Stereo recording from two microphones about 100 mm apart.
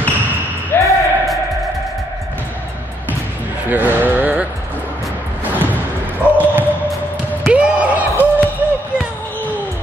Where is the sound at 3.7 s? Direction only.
15° right (ahead or behind).